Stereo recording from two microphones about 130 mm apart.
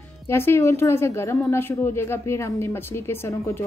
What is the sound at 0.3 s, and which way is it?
Speech, 20° left (ahead or behind).